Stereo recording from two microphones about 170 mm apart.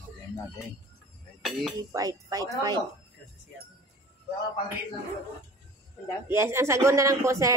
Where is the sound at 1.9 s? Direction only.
20° right (ahead or behind).